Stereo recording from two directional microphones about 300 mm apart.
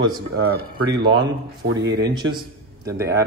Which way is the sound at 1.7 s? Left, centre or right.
Right.